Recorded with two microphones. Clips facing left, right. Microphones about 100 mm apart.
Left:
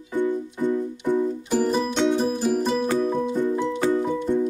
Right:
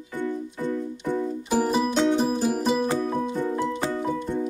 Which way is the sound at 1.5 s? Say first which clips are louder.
Right 2 dB; 10° right (ahead or behind).